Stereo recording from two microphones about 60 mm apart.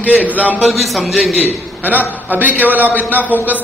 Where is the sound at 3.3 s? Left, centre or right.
Left.